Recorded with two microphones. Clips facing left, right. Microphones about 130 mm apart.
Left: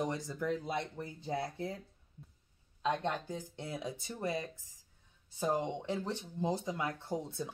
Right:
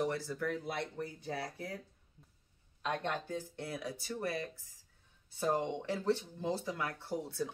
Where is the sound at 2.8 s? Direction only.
15° left (ahead or behind).